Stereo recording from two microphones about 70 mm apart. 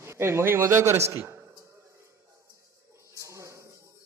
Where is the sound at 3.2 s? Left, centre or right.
Right.